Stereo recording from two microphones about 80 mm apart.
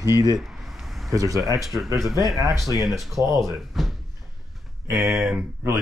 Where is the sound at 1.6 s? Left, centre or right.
Centre.